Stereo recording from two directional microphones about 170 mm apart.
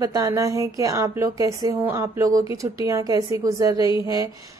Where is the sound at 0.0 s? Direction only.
20° right (ahead or behind).